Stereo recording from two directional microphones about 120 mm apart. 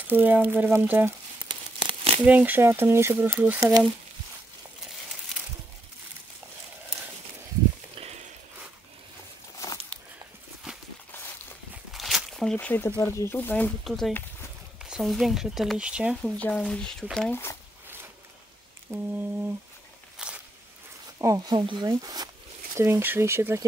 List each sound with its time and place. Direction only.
0.1 s speech: 15° right (ahead or behind)
1.5 s tearing: 45° right (ahead or behind)
2.2 s speech: 15° right (ahead or behind)
3.5 s speech: 30° right (ahead or behind)
7.9 s a sound: 55° right (ahead or behind)
11.9 s a sound: centre (ahead or behind)
12.5 s speech: 15° left (ahead or behind)
13.8 s speech: centre (ahead or behind)
16.3 s speech: 10° left (ahead or behind)
17.3 s speech: 20° left (ahead or behind)
18.9 s speech: 25° right (ahead or behind)
20.2 s walk: 5° right (ahead or behind)
21.2 s speech: 30° right (ahead or behind)
22.8 s speech: 20° right (ahead or behind)